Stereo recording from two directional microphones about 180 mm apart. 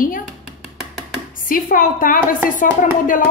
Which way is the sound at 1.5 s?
50° left (ahead or behind).